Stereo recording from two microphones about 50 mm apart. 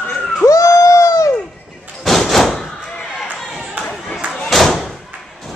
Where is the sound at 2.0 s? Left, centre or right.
Centre.